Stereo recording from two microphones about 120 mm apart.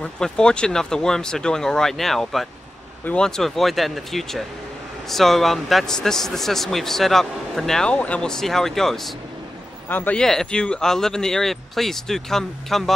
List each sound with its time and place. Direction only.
0.0 s a man's voice: 5° left (ahead or behind)
9.8 s a man's voice: 15° left (ahead or behind)